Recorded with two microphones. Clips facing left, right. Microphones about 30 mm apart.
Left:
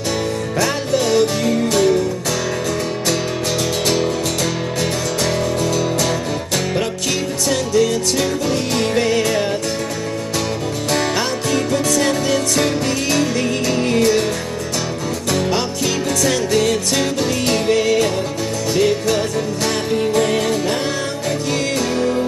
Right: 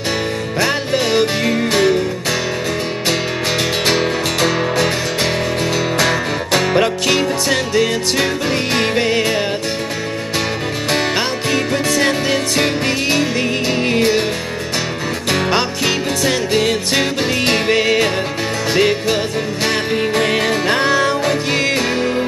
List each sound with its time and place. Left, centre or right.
0.6 s music: right
3.8 s music: right
10.9 s music: right
15.3 s music: right